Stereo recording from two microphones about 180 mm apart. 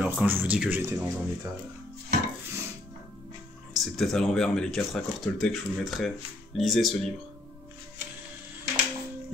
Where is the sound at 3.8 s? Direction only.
Centre (ahead or behind).